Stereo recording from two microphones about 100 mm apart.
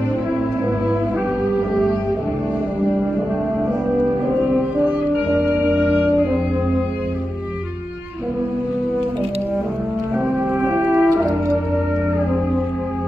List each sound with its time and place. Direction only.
4.8 s music: 15° right (ahead or behind)
10.6 s brass instrument: 20° right (ahead or behind)